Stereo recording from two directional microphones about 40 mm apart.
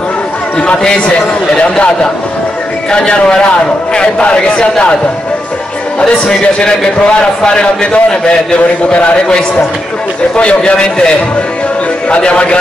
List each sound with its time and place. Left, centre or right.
0.6 s a man's voice: left
2.9 s a man's voice: left
7.4 s a man's voice: left
12.1 s a man's voice: left